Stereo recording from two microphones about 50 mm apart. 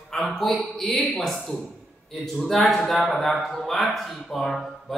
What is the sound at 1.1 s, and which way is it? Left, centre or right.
Music, centre.